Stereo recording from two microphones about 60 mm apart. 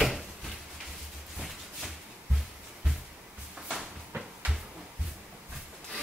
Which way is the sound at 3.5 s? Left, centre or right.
Centre.